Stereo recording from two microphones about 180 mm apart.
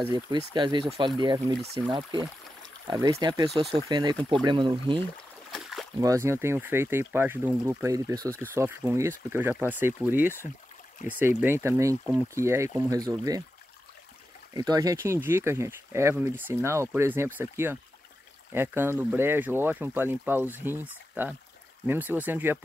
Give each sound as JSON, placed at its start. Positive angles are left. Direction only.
{"t": 0.5, "sound": "speech", "side_deg": -25}
{"t": 5.5, "sound": "boat", "side_deg": 0}
{"t": 5.9, "sound": "speech", "side_deg": -15}
{"t": 14.5, "sound": "speech", "side_deg": -20}